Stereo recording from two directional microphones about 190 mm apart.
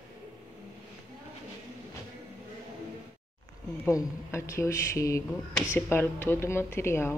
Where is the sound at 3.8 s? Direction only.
15° left (ahead or behind).